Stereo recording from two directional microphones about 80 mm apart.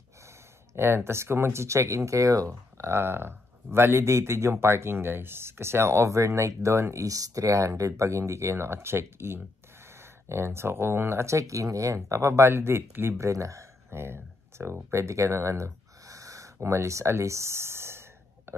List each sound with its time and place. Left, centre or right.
0.7 s speech: right
2.9 s speech: right
13.3 s a sound: right